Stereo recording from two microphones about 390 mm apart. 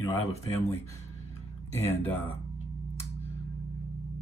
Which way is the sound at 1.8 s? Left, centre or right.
Centre.